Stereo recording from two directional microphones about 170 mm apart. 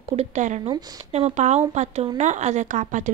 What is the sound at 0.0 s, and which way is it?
Speech, 40° right (ahead or behind).